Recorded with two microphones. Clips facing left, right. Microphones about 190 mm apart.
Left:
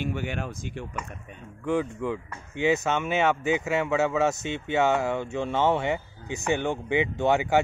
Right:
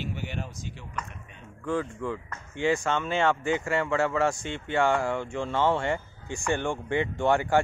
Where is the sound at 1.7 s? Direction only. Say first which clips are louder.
Left 3 dB; 20° left (ahead or behind).